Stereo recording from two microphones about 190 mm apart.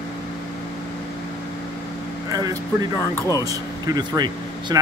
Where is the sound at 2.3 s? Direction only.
15° right (ahead or behind).